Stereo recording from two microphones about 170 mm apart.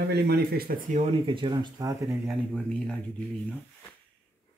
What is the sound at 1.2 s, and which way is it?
Speech, 30° right (ahead or behind).